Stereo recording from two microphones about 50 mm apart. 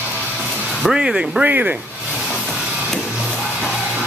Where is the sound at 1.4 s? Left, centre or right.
Right.